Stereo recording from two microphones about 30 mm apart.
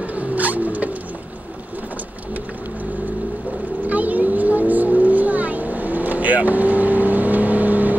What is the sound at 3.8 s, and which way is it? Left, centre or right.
Vehicle, right.